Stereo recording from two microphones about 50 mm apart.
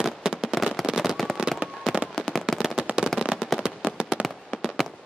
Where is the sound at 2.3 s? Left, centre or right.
Centre.